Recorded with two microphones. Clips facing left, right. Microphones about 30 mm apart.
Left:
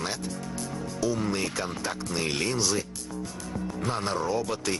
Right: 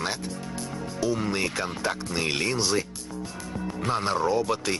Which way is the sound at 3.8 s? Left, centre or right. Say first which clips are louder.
Right 4 dB; right.